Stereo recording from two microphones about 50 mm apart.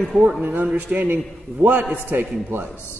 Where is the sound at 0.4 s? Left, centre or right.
Right.